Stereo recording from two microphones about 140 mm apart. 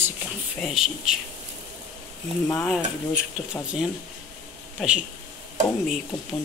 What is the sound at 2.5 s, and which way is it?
Speech, centre (ahead or behind).